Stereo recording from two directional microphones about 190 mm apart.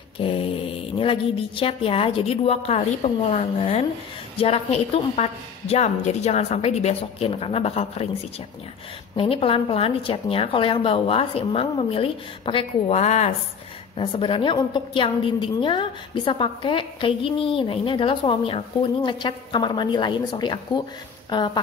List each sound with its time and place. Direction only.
0.2 s a woman's voice: 30° left (ahead or behind)